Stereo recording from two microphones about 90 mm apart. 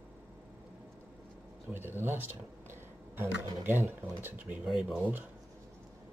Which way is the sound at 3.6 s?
25° right (ahead or behind).